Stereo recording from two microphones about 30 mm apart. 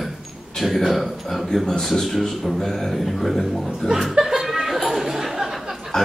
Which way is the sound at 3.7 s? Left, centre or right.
Centre.